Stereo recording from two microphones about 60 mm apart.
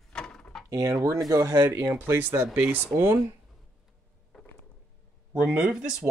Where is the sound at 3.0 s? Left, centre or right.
Right.